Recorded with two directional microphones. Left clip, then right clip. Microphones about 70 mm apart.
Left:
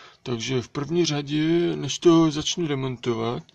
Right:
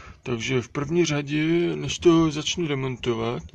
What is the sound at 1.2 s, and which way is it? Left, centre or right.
Speech, left.